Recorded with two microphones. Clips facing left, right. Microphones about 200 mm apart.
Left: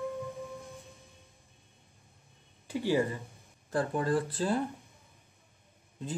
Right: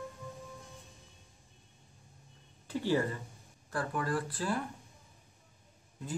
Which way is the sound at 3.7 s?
25° left (ahead or behind).